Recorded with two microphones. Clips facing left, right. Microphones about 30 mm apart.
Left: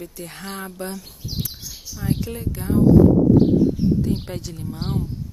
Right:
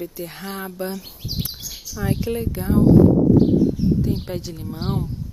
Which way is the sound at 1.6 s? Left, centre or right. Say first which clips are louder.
Right 2 dB; right.